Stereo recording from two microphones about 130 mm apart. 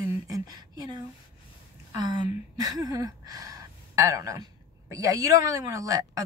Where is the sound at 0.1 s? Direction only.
30° right (ahead or behind).